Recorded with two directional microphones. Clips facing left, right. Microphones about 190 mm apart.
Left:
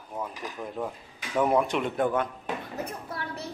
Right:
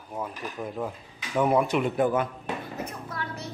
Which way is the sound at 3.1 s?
30° left (ahead or behind).